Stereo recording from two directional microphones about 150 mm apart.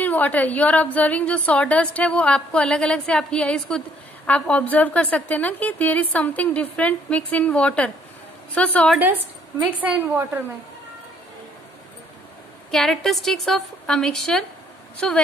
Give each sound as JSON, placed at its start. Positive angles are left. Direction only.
{"t": 0.0, "sound": "a woman's voice", "side_deg": 10}
{"t": 8.9, "sound": "a woman's voice", "side_deg": -10}
{"t": 12.7, "sound": "a woman's voice", "side_deg": 5}